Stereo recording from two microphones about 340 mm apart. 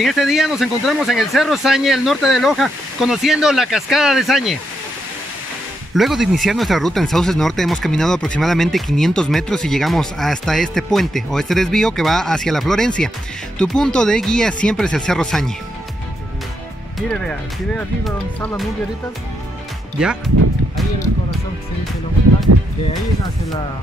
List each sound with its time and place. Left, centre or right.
0.0 s speech: centre
5.9 s speech: centre
17.1 s speech: centre
20.0 s speech: centre
22.5 s music: right